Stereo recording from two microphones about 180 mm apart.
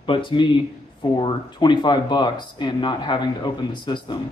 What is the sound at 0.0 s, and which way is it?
A man's voice, 25° left (ahead or behind).